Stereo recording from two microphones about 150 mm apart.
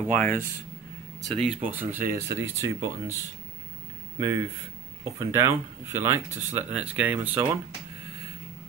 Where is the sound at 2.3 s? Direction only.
20° right (ahead or behind).